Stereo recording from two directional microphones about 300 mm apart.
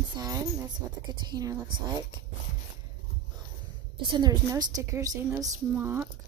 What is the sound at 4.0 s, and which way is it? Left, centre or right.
A woman's voice, centre.